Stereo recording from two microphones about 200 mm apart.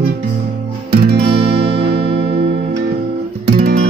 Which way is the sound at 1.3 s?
30° right (ahead or behind).